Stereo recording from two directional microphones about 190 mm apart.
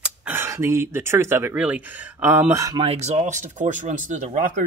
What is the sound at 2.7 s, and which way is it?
Speech, 30° right (ahead or behind).